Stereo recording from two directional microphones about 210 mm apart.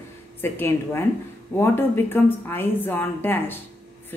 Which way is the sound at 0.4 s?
10° left (ahead or behind).